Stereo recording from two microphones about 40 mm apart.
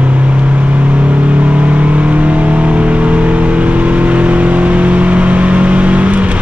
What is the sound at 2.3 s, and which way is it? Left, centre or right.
Vehicle, right.